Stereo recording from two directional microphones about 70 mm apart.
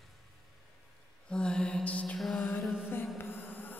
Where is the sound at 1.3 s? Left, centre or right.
Centre.